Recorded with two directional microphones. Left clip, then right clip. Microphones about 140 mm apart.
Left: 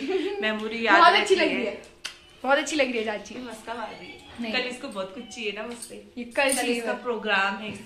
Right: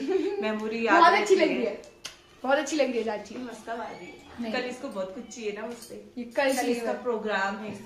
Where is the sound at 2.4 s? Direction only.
25° left (ahead or behind).